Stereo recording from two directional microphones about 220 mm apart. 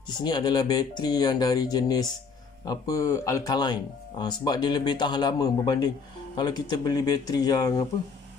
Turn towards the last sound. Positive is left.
turn(degrees=15)  # may be behind; listen again after turning